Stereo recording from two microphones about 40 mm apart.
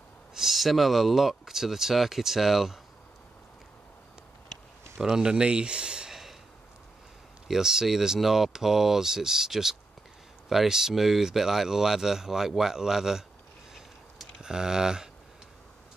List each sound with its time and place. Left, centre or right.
0.3 s speech: centre
5.0 s speech: centre
7.4 s speech: centre
14.4 s speech: centre